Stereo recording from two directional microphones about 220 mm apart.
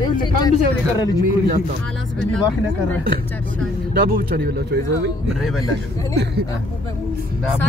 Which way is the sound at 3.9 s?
45° right (ahead or behind).